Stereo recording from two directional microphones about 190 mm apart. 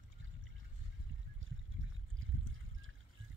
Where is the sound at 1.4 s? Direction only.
90° right.